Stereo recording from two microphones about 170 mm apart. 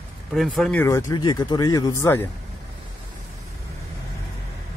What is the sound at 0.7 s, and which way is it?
Speech, 20° left (ahead or behind).